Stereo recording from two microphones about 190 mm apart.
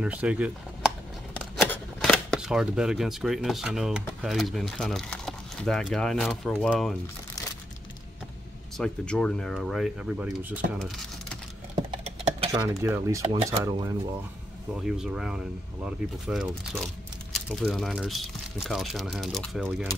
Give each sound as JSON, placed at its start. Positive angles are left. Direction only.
{"t": 0.0, "sound": "dishes", "side_deg": -5}
{"t": 1.4, "sound": "a sound", "side_deg": 5}
{"t": 4.2, "sound": "speech", "side_deg": 0}
{"t": 8.7, "sound": "speech", "side_deg": 5}
{"t": 11.7, "sound": "typing", "side_deg": -35}
{"t": 12.5, "sound": "dishes", "side_deg": -15}
{"t": 13.5, "sound": "speech", "side_deg": -20}
{"t": 14.8, "sound": "speech", "side_deg": -5}